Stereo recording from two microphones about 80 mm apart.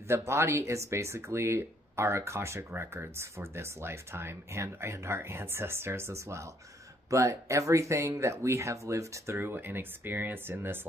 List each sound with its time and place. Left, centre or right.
0.1 s speech: right